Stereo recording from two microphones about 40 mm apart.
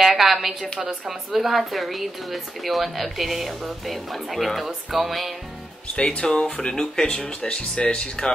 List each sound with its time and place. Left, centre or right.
0.0 s speech: centre
6.0 s speech: centre